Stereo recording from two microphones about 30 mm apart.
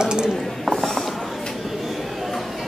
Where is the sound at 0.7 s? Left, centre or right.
Centre.